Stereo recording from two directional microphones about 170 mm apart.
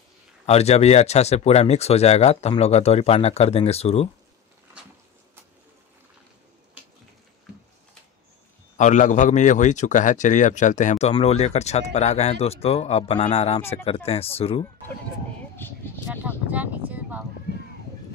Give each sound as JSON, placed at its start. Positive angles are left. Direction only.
{"t": 0.5, "sound": "a man's voice", "side_deg": 40}
{"t": 8.7, "sound": "a man's voice", "side_deg": 45}
{"t": 15.6, "sound": "speech", "side_deg": 10}
{"t": 16.3, "sound": "speech", "side_deg": -10}